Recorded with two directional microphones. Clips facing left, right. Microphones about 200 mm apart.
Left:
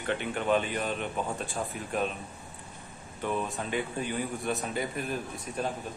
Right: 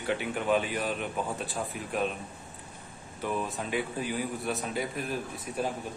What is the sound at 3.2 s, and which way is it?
A man's voice, 5° right (ahead or behind).